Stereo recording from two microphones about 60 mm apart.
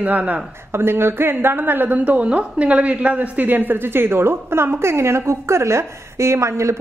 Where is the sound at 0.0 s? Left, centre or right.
Right.